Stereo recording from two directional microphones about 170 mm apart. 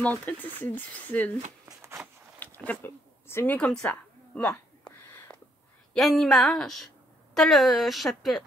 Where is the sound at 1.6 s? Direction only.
15° right (ahead or behind).